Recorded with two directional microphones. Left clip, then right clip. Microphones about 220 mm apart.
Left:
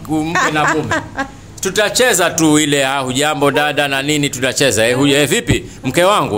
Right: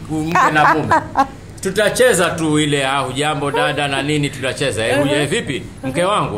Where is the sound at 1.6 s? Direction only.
40° left (ahead or behind).